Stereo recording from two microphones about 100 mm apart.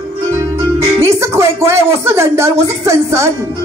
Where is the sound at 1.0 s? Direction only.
30° right (ahead or behind).